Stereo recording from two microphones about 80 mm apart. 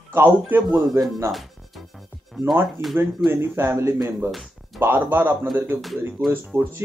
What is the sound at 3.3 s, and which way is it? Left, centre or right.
Speech, right.